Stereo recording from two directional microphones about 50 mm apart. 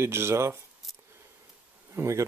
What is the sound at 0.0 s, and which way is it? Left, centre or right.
Speech, right.